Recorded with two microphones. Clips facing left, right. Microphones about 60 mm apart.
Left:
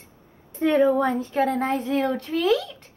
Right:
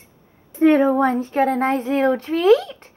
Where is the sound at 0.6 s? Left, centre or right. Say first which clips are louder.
Right 4 dB; right.